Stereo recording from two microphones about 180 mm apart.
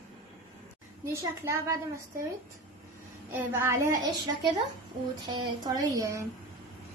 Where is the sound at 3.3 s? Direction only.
10° right (ahead or behind).